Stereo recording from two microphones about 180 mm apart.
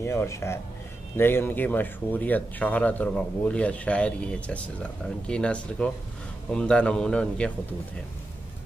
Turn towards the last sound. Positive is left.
turn(degrees=5)  # may be behind; listen again after turning